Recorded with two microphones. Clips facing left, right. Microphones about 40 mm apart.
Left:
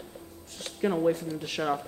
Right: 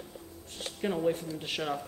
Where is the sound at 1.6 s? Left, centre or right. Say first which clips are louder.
Left 6 dB; centre.